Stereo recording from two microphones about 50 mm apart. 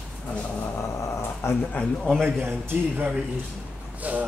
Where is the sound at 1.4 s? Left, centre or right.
Left.